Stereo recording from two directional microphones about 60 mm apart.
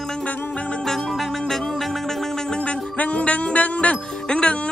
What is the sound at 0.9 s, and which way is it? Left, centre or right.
Music, centre.